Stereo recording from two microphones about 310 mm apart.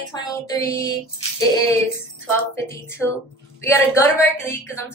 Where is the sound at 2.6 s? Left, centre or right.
Centre.